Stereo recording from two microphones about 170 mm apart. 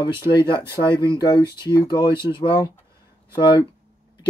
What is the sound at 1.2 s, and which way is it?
Speech, 25° left (ahead or behind).